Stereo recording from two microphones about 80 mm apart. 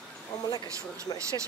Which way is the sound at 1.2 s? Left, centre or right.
Right.